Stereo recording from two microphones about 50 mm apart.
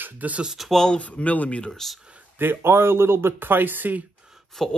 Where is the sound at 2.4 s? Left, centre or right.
Right.